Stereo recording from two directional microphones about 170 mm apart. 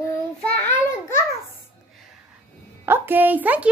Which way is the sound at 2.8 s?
10° right (ahead or behind).